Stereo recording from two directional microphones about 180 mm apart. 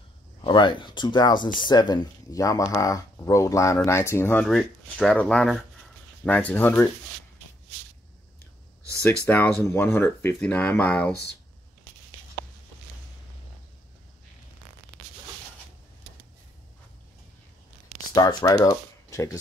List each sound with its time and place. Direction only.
0.4 s speech: 25° left (ahead or behind)
4.5 s speech: centre (ahead or behind)
9.0 s speech: 10° left (ahead or behind)
18.1 s speech: 20° left (ahead or behind)